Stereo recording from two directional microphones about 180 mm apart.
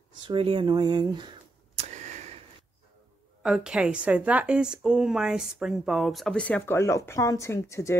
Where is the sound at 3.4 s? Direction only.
5° right (ahead or behind).